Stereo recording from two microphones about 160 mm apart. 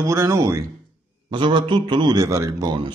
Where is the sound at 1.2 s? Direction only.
30° right (ahead or behind).